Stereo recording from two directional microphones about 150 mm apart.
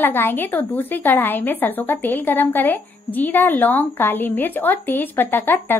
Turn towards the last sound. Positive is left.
turn(degrees=15)  # may be behind; listen again after turning